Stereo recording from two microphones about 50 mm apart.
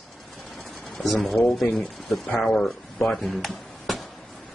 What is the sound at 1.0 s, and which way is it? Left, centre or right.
Speech, centre.